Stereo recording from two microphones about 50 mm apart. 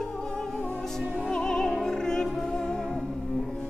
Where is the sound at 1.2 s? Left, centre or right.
Centre.